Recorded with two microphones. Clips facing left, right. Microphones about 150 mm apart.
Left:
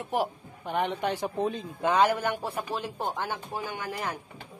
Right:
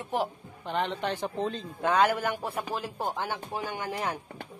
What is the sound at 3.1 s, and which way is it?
Speech, 15° right (ahead or behind).